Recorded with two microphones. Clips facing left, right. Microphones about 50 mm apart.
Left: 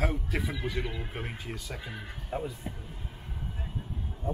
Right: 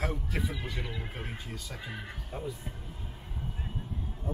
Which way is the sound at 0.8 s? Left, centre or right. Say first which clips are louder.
Left 3 dB; centre.